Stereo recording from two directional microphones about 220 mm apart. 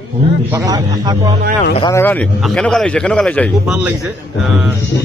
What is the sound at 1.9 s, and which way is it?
Speech, 10° left (ahead or behind).